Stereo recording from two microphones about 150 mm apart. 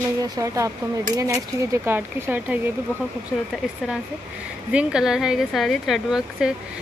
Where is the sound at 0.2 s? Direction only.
20° right (ahead or behind).